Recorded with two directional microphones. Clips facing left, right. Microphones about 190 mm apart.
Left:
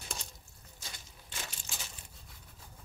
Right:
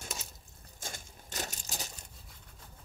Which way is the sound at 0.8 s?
45° right (ahead or behind).